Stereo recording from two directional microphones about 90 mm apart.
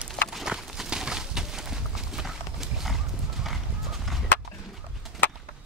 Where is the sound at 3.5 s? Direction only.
Centre (ahead or behind).